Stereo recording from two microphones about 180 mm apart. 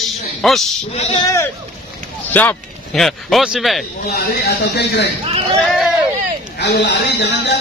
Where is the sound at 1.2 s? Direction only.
15° left (ahead or behind); by 3.9 s centre (ahead or behind).